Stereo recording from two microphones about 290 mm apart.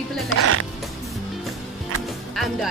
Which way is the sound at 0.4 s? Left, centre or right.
Right.